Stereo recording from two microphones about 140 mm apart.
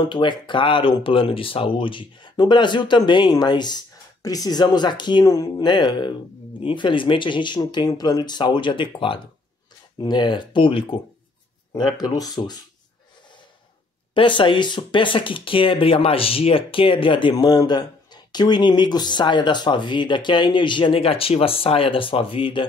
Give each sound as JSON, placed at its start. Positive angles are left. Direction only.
{"t": 0.0, "sound": "speech", "side_deg": 35}
{"t": 11.7, "sound": "speech", "side_deg": 30}
{"t": 14.1, "sound": "speech", "side_deg": 35}